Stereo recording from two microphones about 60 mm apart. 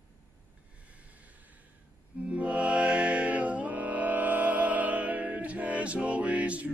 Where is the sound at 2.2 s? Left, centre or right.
Right.